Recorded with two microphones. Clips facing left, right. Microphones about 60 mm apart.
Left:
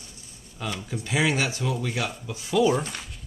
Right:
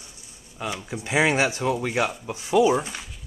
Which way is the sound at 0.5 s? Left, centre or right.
Right.